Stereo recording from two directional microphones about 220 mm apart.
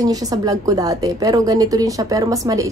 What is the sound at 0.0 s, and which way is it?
A woman's voice, 15° right (ahead or behind).